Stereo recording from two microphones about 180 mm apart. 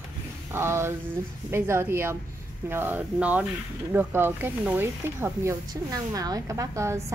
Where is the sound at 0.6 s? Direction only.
15° right (ahead or behind).